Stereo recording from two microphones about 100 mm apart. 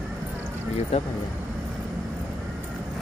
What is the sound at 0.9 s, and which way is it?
Speech, 90° left.